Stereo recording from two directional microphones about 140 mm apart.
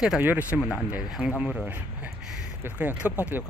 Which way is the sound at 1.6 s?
10° right (ahead or behind).